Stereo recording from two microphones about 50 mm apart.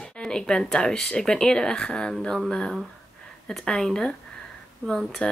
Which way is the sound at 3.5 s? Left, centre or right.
Centre.